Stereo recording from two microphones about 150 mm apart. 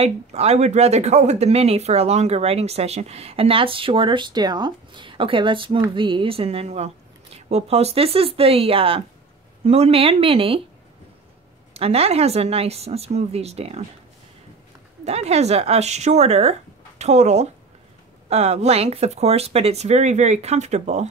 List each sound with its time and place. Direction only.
0.0 s a woman's voice: 45° right (ahead or behind)
11.7 s speech: 40° right (ahead or behind)
15.0 s speech: 45° right (ahead or behind)